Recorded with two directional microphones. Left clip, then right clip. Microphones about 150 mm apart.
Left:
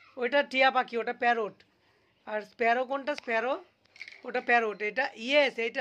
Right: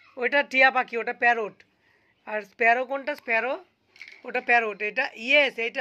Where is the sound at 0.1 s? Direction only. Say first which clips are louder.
Right 4 dB; 5° left (ahead or behind).